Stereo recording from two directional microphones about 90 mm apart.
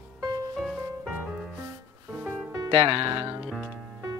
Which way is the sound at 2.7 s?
75° right (ahead or behind).